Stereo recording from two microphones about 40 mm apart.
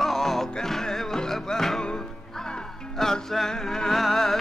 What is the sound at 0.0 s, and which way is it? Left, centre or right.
Music, centre.